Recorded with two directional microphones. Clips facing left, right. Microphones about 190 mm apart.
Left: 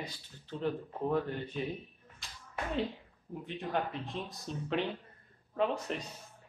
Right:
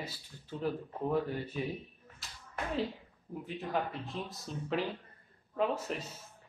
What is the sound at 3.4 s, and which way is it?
Speech, 5° right (ahead or behind).